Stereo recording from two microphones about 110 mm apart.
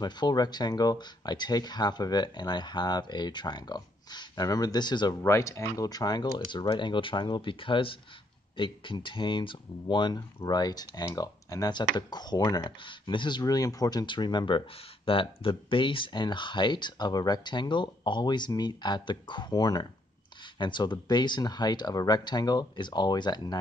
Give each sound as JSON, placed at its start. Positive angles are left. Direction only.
{"t": 0.0, "sound": "speech", "side_deg": 40}
{"t": 5.2, "sound": "speech", "side_deg": 25}
{"t": 10.1, "sound": "speech", "side_deg": 35}
{"t": 15.0, "sound": "speech", "side_deg": 55}